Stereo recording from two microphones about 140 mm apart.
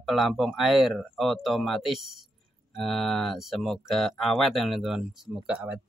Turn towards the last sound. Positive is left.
turn(degrees=-10)  # may be behind; listen again after turning